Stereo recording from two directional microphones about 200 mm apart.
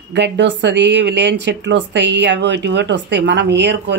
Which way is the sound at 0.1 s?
60° right (ahead or behind).